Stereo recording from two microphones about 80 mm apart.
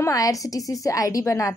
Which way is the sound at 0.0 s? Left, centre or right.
Left.